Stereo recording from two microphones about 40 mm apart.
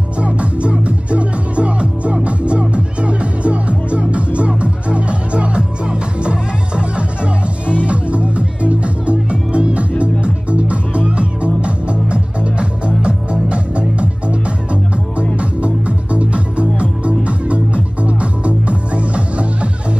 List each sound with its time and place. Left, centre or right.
0.2 s music: right
15.3 s music: right